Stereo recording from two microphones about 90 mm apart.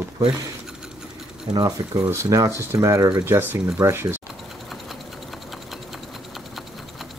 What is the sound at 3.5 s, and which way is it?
Speech, 25° right (ahead or behind).